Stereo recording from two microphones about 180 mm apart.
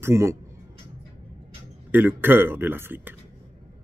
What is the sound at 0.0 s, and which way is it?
Speech, 15° right (ahead or behind).